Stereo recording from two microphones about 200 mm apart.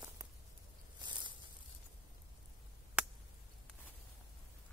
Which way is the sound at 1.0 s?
20° right (ahead or behind).